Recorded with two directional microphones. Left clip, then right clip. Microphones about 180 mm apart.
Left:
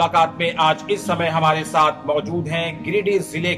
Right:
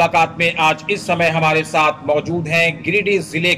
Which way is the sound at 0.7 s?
40° left (ahead or behind).